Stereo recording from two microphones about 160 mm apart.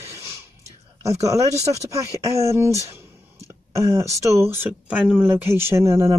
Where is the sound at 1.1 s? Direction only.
20° right (ahead or behind).